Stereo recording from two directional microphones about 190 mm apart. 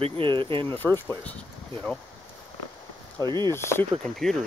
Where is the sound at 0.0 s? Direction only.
25° right (ahead or behind).